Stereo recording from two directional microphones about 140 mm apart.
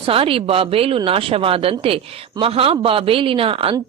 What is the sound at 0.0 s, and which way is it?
A woman's voice, 40° right (ahead or behind).